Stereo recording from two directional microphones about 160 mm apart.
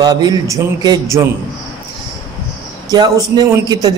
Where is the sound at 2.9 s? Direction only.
25° right (ahead or behind).